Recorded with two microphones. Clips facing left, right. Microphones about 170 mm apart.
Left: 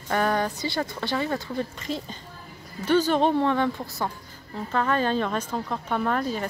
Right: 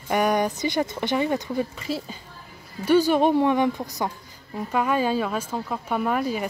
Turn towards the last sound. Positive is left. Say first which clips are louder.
# right 2 dB
turn(degrees=-10)  # may be behind; listen again after turning